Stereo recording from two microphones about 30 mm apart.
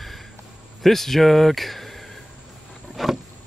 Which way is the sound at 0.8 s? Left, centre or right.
Centre.